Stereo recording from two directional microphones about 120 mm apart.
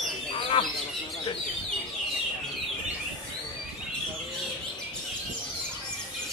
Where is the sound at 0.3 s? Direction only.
50° left (ahead or behind).